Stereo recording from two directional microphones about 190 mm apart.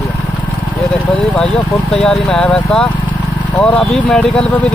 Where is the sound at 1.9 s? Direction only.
5° left (ahead or behind).